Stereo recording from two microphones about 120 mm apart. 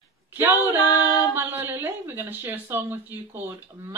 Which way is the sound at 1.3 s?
20° right (ahead or behind).